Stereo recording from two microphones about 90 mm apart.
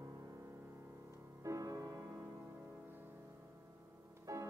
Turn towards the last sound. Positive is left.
turn(degrees=-35)  # may be behind; listen again after turning